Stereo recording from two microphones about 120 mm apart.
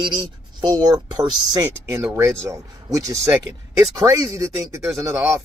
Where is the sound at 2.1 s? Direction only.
25° right (ahead or behind).